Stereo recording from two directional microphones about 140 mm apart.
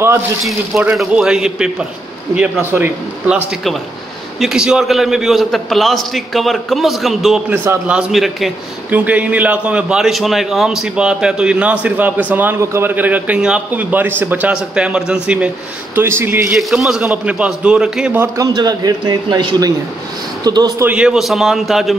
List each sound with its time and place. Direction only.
0.9 s a man's voice: 5° right (ahead or behind)
8.9 s a man's voice: 10° right (ahead or behind)
16.5 s a man's voice: centre (ahead or behind)
18.2 s a man's voice: 25° right (ahead or behind)
20.8 s a man's voice: 10° right (ahead or behind)